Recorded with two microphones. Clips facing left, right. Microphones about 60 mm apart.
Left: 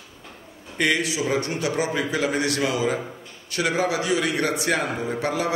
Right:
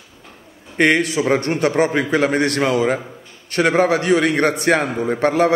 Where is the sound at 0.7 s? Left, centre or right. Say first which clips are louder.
Right 7 dB; right.